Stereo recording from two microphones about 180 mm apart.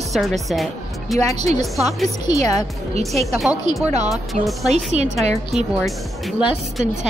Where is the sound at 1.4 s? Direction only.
40° right (ahead or behind).